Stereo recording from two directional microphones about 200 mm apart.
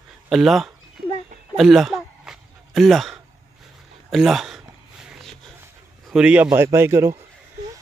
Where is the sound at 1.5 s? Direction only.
Centre (ahead or behind).